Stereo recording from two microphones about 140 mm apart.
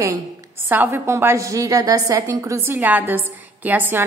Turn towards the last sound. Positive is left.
turn(degrees=-15)  # may be behind; listen again after turning